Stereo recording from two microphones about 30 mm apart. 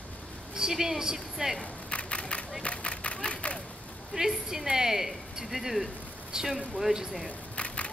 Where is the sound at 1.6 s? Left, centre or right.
Left.